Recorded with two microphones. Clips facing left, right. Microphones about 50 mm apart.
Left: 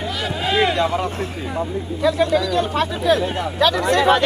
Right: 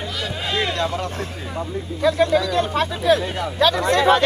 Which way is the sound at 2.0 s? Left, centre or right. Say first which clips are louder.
Even; right.